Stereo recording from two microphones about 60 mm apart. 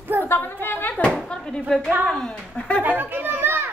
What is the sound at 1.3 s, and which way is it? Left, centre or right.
Speech, centre.